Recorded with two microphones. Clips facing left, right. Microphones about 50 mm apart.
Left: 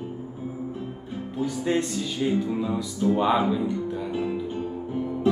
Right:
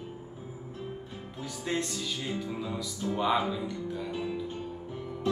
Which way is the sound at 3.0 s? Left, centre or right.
Left.